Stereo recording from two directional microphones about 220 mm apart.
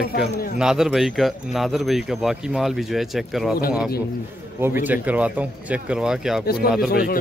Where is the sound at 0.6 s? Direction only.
Centre (ahead or behind).